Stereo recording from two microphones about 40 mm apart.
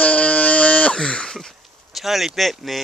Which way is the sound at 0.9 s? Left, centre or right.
Left.